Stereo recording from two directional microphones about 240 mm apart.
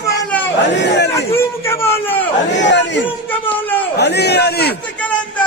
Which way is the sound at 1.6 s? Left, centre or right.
Centre.